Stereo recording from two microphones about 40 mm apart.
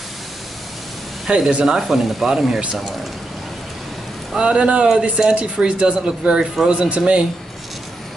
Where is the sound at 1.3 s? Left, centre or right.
Right.